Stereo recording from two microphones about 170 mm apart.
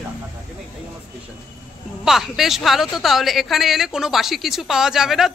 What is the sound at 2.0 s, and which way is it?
A woman's voice, centre (ahead or behind).